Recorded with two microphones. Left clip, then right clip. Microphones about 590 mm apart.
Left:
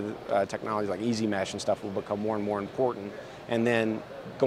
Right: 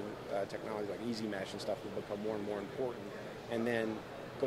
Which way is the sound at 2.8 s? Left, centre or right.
Left.